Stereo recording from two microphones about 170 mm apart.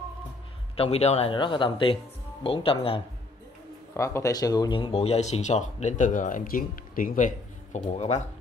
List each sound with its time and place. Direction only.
0.7 s speech: 40° left (ahead or behind)
3.9 s speech: 15° left (ahead or behind); by 8.3 s 40° left (ahead or behind)